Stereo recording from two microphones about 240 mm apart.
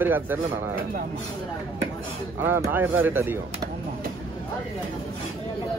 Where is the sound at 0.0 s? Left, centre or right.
Centre.